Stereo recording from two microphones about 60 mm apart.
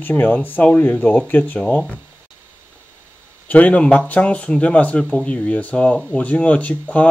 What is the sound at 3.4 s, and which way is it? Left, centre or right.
Speech, left.